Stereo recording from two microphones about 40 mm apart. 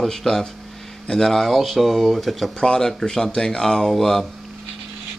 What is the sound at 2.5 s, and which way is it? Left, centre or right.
Speech, centre.